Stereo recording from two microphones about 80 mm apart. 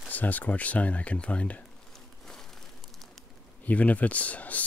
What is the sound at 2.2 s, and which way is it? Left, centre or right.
Crumpling, centre.